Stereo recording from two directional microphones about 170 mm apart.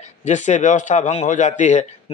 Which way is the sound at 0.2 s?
45° left (ahead or behind).